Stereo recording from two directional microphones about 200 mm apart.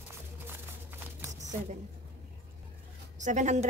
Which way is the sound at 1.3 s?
35° right (ahead or behind).